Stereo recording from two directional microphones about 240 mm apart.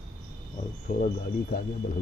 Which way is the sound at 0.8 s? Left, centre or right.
Left.